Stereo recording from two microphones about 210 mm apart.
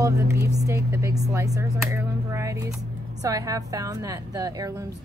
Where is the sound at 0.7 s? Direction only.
15° right (ahead or behind).